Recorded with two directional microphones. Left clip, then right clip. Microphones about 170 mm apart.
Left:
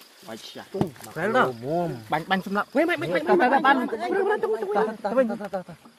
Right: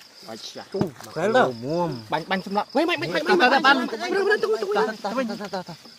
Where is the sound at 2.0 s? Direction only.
40° left (ahead or behind).